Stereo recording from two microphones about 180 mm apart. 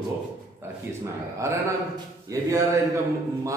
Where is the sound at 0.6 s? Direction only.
15° right (ahead or behind).